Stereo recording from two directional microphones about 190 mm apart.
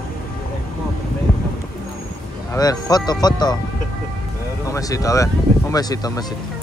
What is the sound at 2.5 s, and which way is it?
Speech, 20° left (ahead or behind).